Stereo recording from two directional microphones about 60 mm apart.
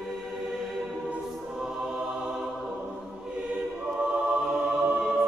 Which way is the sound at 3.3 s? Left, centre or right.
Centre.